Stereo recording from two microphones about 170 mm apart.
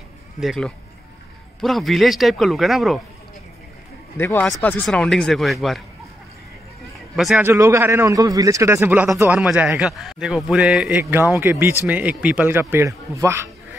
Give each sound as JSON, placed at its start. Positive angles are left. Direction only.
{"t": 0.4, "sound": "a man's voice", "side_deg": 0}
{"t": 4.2, "sound": "a man's voice", "side_deg": 15}
{"t": 7.2, "sound": "a man's voice", "side_deg": 0}
{"t": 7.4, "sound": "a man's voice", "side_deg": -15}